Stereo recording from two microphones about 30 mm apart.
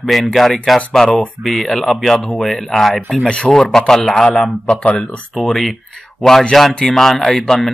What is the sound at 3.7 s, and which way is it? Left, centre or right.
Speech, centre.